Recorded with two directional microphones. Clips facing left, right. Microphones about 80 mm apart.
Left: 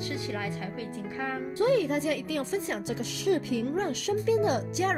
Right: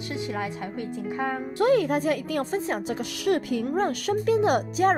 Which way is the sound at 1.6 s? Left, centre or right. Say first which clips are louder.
Right 3 dB; right.